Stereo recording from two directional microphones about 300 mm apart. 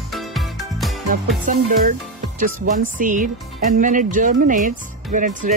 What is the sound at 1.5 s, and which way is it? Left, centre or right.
Speech, right.